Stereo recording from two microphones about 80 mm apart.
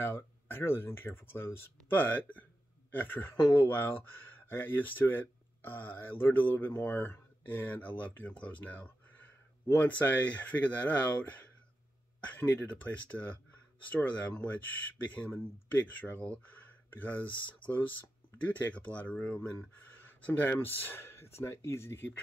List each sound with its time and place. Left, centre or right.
0.0 s speech: left
20.0 s a sound: left
20.5 s speech: left